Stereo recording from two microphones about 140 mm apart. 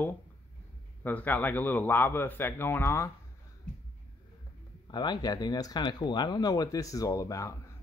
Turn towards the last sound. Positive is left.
turn(degrees=25)  # may be behind; listen again after turning